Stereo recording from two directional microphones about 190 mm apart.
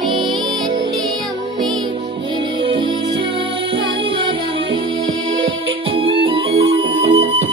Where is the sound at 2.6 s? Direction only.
25° right (ahead or behind).